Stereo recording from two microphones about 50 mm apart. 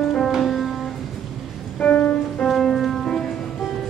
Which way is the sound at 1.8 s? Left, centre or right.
Left.